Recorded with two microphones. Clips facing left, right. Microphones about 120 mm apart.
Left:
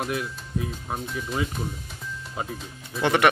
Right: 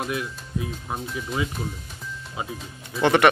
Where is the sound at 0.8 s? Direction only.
Centre (ahead or behind).